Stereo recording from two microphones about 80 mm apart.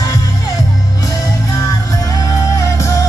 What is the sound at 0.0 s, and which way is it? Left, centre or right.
Music, left.